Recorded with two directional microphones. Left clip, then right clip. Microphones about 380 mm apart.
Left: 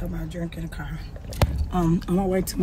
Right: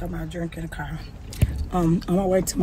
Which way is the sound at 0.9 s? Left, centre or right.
Centre.